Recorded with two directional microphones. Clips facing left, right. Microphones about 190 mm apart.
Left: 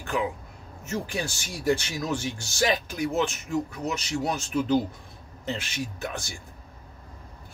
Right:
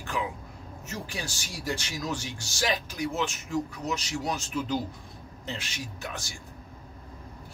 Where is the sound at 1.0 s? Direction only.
55° left (ahead or behind).